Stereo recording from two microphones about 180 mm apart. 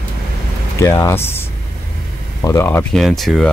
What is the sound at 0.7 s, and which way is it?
Speech, 15° left (ahead or behind).